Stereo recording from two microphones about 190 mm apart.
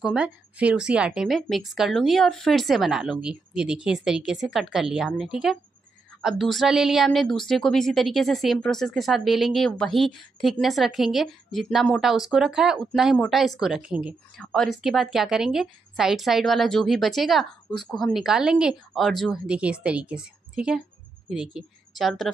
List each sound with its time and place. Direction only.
0.0 s a woman's voice: 5° right (ahead or behind)